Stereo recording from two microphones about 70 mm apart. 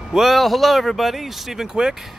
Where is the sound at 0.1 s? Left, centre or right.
Centre.